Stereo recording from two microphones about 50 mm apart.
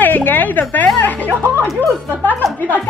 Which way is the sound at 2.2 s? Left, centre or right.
Left.